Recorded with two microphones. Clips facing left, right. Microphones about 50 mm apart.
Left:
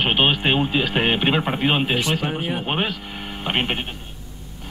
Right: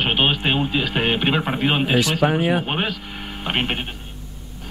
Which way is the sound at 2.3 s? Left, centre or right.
Right.